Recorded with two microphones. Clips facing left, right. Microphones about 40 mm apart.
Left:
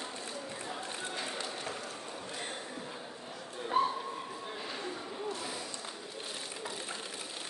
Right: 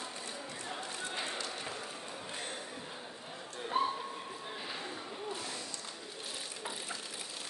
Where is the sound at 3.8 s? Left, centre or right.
Centre.